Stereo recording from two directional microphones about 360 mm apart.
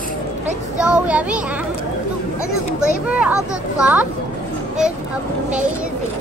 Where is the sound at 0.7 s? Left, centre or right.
Centre.